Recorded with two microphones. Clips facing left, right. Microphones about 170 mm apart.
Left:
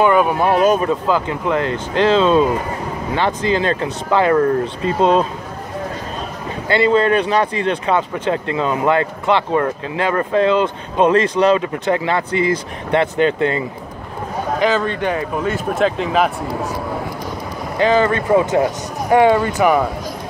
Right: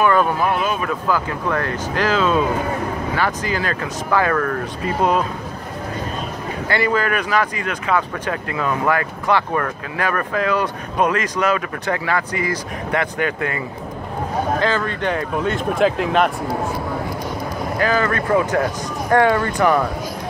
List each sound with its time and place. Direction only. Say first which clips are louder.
0.0 s speech: left 3 dB; 15° left (ahead or behind)
0.4 s speech: left 6 dB; 40° left (ahead or behind)
0.8 s speech: left 4 dB; 20° left (ahead or behind)
6.7 s speech: left 6 dB; 25° left (ahead or behind)
14.6 s speech: left 3 dB; 15° left (ahead or behind); by 16.3 s centre (ahead or behind)
17.7 s speech: left 5 dB; 25° left (ahead or behind)